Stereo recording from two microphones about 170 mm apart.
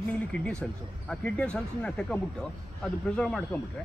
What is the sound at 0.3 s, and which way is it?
Speech, 5° left (ahead or behind).